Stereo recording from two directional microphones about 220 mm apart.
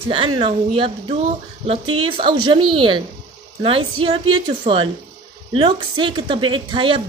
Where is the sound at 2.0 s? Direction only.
25° right (ahead or behind).